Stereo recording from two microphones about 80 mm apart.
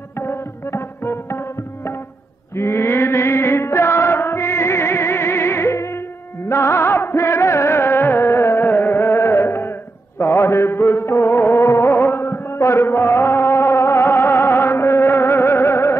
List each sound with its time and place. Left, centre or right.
0.2 s music: left